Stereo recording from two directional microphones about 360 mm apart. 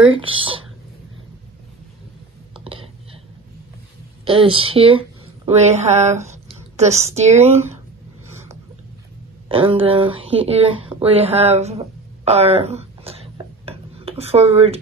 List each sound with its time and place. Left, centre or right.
0.1 s speech: centre
2.5 s whispering: centre
4.2 s speech: centre
9.5 s speech: centre
12.3 s dishes: centre